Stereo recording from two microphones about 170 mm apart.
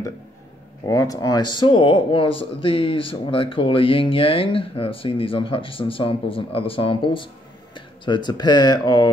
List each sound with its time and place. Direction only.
0.8 s speech: 20° left (ahead or behind)